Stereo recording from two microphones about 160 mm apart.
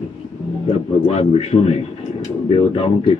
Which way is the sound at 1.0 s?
40° left (ahead or behind).